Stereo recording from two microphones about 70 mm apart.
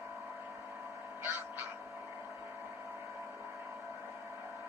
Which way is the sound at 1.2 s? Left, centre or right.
Right.